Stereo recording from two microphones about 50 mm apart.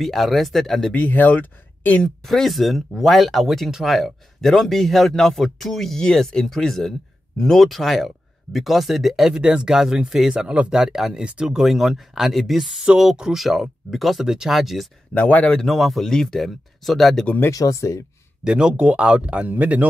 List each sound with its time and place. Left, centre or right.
0.0 s speech: centre
0.9 s speech: left
2.2 s speech: centre
9.8 s speech: centre
15.1 s speech: left
15.5 s speech: centre
17.5 s speech: left
18.4 s speech: centre